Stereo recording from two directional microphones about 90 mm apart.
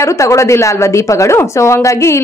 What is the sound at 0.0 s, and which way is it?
A woman's voice, 35° left (ahead or behind).